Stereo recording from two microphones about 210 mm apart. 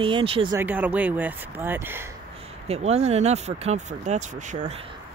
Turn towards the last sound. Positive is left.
turn(degrees=-35)  # may be behind; listen again after turning